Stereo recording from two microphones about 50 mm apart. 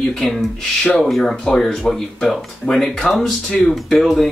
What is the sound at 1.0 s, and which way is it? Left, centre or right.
Speech, centre.